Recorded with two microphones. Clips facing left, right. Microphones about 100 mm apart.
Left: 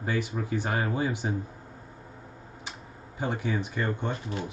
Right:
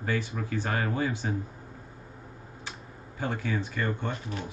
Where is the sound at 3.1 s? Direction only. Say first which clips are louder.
Left 1 dB; 15° left (ahead or behind).